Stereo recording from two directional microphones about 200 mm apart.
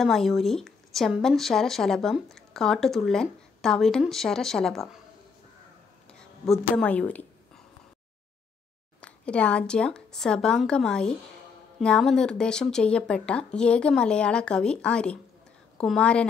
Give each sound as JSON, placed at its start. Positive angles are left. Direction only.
{"t": 0.0, "sound": "speech", "side_deg": 0}
{"t": 6.0, "sound": "speech", "side_deg": 0}
{"t": 9.0, "sound": "speech", "side_deg": 5}